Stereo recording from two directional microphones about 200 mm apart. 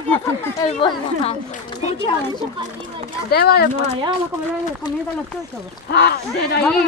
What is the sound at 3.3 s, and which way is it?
Speech, 50° left (ahead or behind).